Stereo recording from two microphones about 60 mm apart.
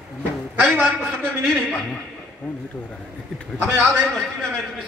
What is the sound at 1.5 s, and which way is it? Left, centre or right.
Speech, centre.